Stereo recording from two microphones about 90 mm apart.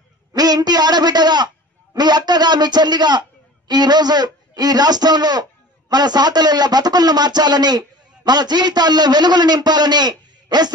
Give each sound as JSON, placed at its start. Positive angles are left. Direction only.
{"t": 0.3, "sound": "a man's voice", "side_deg": -45}